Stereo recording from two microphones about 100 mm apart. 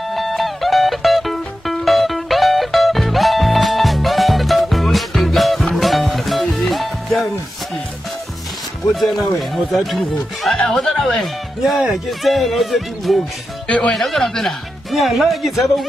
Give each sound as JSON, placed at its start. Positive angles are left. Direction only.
{"t": 0.1, "sound": "music", "side_deg": 0}
{"t": 9.7, "sound": "speech", "side_deg": 0}
{"t": 13.7, "sound": "speech", "side_deg": 10}
{"t": 13.9, "sound": "speech", "side_deg": 0}